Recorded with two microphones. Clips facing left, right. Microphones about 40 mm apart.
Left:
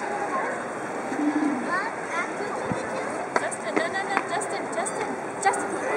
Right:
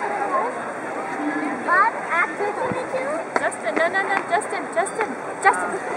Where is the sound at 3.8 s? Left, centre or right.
Centre.